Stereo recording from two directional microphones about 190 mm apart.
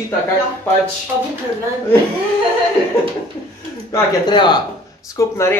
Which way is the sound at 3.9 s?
20° left (ahead or behind).